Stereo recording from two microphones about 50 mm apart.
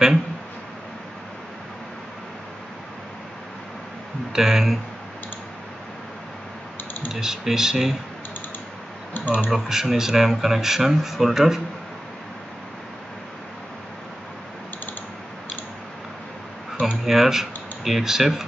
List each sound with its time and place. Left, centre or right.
4.3 s speech: centre
7.1 s speech: centre
9.1 s speech: left
9.5 s speech: centre
17.0 s speech: centre